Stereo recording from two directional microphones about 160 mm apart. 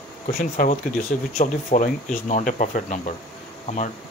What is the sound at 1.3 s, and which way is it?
Speech, 55° left (ahead or behind).